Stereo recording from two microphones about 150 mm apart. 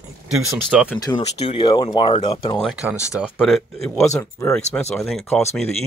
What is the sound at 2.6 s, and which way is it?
Speech, centre (ahead or behind).